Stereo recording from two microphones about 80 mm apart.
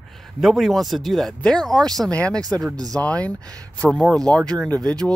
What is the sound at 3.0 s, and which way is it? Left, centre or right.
Speech, centre.